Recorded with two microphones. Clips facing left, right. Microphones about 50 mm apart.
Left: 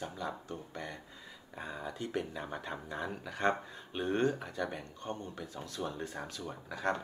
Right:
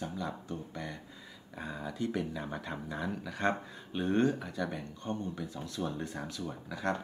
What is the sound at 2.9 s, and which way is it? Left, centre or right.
Speech, centre.